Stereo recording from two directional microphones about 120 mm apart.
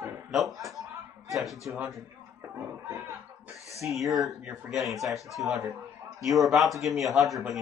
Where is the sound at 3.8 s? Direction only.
Centre (ahead or behind).